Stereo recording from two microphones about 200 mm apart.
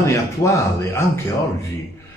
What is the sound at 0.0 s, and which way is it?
A man's voice, 15° left (ahead or behind).